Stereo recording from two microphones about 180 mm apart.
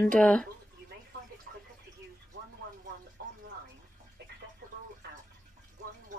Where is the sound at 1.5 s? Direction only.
60° right (ahead or behind).